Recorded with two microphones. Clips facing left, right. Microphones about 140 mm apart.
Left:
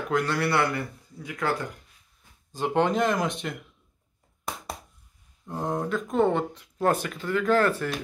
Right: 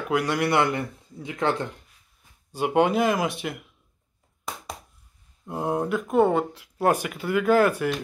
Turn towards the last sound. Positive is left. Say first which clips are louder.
# right 3 dB
turn(degrees=-10)  # may be behind; listen again after turning